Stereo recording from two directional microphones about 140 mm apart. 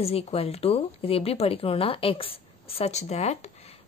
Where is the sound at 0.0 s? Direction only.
45° left (ahead or behind).